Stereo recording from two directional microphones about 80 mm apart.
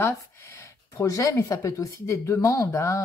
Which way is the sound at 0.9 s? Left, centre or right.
Left.